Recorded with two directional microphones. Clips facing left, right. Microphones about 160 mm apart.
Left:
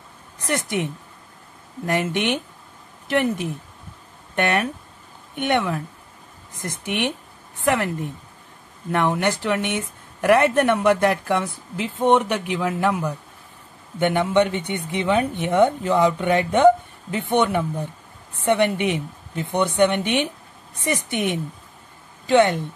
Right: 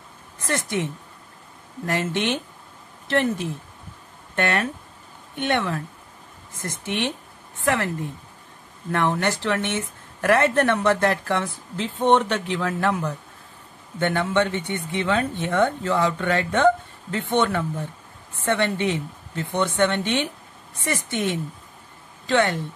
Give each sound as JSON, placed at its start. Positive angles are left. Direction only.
{"t": 0.4, "sound": "a woman's voice", "side_deg": 15}